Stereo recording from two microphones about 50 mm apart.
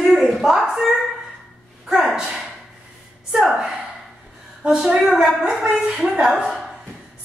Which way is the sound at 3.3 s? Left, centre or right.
Centre.